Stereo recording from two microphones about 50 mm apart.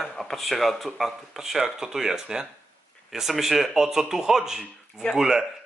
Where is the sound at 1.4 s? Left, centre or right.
Centre.